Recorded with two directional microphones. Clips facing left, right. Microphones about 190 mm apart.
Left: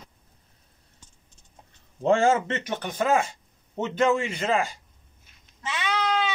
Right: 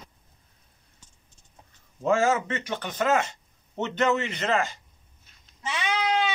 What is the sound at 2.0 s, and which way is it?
A man's voice, 30° left (ahead or behind).